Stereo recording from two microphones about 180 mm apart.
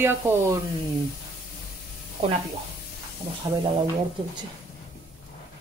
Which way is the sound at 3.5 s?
30° right (ahead or behind).